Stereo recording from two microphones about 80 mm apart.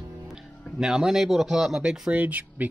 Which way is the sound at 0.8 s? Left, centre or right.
Centre.